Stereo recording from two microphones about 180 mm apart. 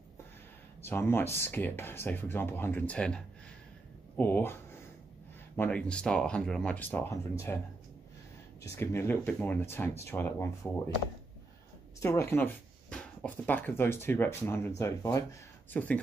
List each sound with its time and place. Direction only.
0.8 s speech: 15° left (ahead or behind)
4.2 s speech: 10° left (ahead or behind)
5.6 s speech: 5° left (ahead or behind)
8.6 s speech: 15° left (ahead or behind)
12.0 s speech: 15° left (ahead or behind)